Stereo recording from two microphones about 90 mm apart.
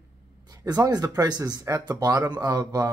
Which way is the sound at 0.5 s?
45° right (ahead or behind).